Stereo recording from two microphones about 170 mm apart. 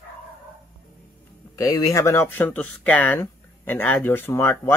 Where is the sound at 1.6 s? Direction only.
20° left (ahead or behind).